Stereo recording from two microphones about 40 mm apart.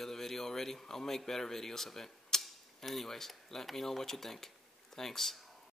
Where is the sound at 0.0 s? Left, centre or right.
Centre.